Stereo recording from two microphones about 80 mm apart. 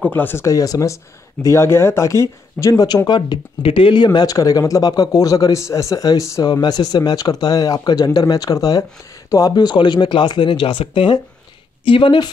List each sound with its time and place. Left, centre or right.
0.0 s speech: left
0.5 s speech: left
3.1 s speech: left
6.4 s speech: left